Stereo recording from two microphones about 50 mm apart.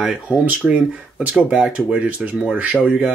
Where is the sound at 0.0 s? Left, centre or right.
Right.